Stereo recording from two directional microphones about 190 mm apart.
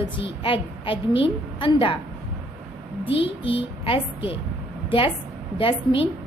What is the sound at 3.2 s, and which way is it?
A woman's voice, 30° left (ahead or behind).